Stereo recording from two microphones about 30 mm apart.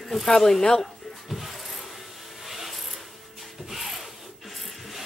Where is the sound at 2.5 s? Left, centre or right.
Centre.